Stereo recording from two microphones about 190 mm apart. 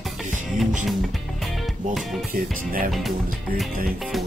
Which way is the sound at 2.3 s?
45° right (ahead or behind).